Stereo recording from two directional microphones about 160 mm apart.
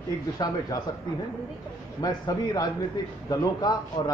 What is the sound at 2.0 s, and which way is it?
A man's voice, 25° left (ahead or behind).